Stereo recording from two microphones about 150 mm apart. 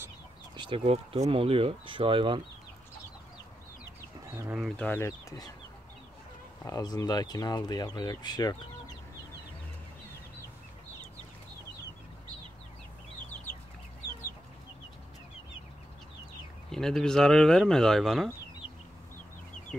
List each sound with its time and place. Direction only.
0.6 s speech: 35° right (ahead or behind)
4.3 s speech: 10° right (ahead or behind)
4.6 s speech: 10° left (ahead or behind)
6.6 s speech: 25° left (ahead or behind)
16.7 s speech: 5° left (ahead or behind)